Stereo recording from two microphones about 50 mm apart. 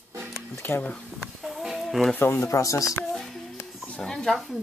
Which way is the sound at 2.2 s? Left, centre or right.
Left.